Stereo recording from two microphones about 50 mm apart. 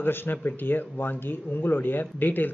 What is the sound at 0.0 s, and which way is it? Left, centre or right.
Speech, left.